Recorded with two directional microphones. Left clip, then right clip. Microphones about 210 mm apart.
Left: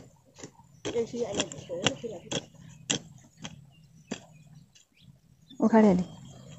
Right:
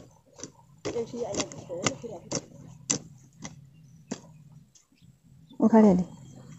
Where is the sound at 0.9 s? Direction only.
40° left (ahead or behind).